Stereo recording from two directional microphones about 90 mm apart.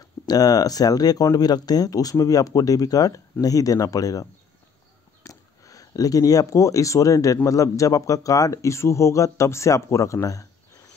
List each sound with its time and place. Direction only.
0.3 s speech: 45° left (ahead or behind)